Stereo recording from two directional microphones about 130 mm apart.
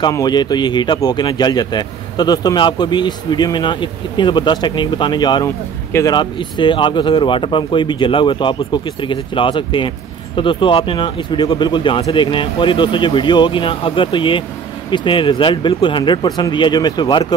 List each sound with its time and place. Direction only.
0.1 s speech: 30° left (ahead or behind)